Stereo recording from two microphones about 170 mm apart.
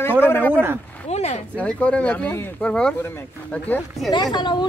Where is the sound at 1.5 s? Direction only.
5° left (ahead or behind).